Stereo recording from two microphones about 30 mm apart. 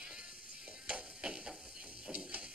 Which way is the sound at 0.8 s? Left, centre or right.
Right.